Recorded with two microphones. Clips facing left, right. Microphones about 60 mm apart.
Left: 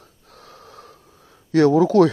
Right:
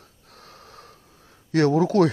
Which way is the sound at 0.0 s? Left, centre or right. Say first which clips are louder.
Left 2 dB; left.